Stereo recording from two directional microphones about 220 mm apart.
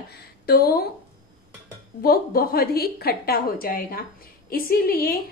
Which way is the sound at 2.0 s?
40° left (ahead or behind).